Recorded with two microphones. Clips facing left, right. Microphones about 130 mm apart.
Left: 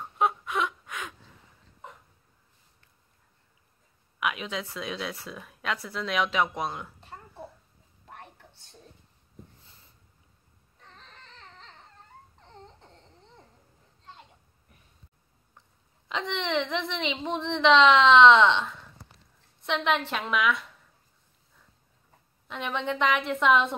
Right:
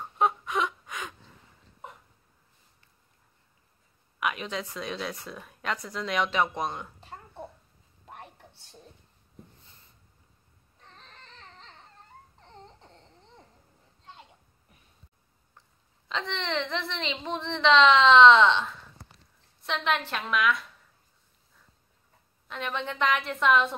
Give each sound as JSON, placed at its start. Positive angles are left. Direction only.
{"t": 0.0, "sound": "a sound", "side_deg": 0}
{"t": 4.2, "sound": "speech", "side_deg": 0}
{"t": 16.1, "sound": "speech", "side_deg": 15}
{"t": 19.6, "sound": "speech", "side_deg": 15}
{"t": 22.5, "sound": "speech", "side_deg": 15}